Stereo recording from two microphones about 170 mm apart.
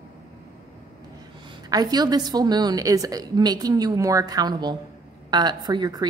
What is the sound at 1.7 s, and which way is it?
A woman's voice, 25° right (ahead or behind).